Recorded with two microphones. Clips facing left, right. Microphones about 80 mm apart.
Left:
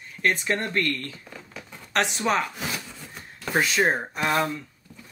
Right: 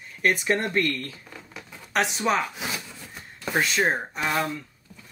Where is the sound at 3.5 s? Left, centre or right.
Centre.